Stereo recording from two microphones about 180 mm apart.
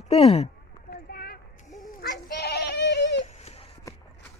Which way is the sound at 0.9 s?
60° left (ahead or behind).